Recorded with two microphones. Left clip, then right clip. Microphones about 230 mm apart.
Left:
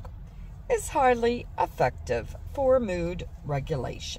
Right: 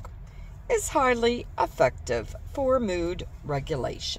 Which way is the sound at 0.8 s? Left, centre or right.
Right.